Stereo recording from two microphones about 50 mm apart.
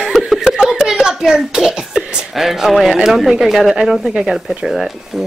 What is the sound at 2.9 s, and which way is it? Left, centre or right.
Speech, centre.